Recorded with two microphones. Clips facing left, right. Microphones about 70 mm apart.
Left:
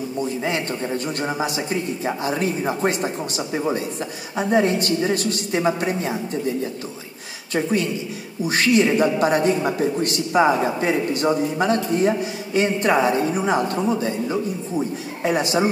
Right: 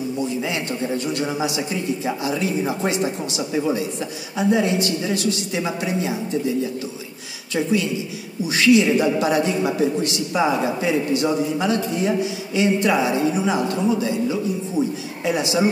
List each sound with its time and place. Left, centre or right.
0.3 s a man's voice: left